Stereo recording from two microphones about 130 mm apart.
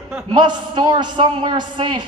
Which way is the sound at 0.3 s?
35° right (ahead or behind).